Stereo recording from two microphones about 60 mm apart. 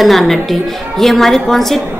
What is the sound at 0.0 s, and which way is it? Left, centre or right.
A woman's voice, centre.